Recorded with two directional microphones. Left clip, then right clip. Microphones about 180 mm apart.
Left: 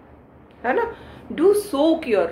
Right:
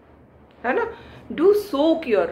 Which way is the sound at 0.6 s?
Centre (ahead or behind).